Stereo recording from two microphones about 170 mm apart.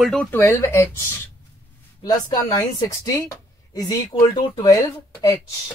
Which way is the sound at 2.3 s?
25° left (ahead or behind).